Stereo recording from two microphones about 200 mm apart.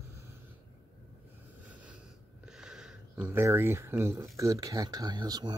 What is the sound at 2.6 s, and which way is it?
Speech, 5° right (ahead or behind).